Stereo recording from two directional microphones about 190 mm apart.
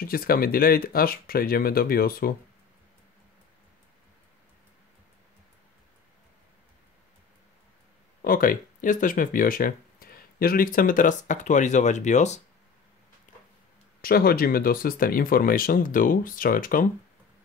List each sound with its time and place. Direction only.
0.0 s speech: 50° left (ahead or behind)
8.2 s speech: 50° left (ahead or behind)
14.0 s speech: 50° left (ahead or behind)